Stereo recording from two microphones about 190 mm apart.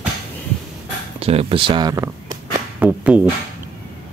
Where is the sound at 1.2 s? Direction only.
30° right (ahead or behind).